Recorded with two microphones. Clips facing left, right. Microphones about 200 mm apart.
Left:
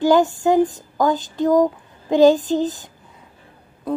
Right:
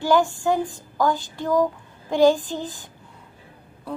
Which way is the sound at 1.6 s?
20° left (ahead or behind).